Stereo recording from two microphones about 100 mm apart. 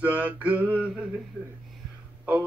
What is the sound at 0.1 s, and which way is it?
Speech, 15° right (ahead or behind).